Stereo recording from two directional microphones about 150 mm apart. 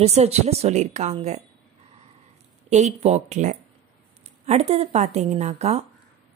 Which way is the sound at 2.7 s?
50° right (ahead or behind).